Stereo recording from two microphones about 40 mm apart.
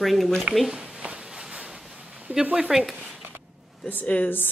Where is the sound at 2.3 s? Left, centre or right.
Right.